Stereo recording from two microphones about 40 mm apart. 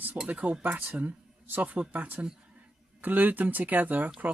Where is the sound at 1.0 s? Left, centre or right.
Right.